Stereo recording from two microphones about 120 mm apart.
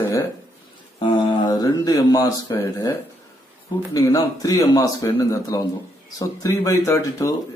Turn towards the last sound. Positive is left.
turn(degrees=25)  # may be behind; listen again after turning